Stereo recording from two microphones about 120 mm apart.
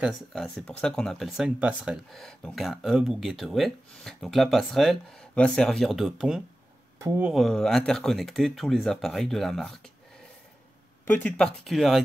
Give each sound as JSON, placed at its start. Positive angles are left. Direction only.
{"t": 0.0, "sound": "speech", "side_deg": 0}
{"t": 2.1, "sound": "speech", "side_deg": 5}
{"t": 11.1, "sound": "speech", "side_deg": 10}